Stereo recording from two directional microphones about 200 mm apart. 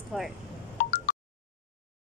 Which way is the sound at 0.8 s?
45° left (ahead or behind).